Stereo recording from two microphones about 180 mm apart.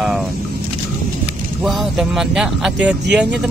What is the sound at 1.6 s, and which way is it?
Speech, centre (ahead or behind).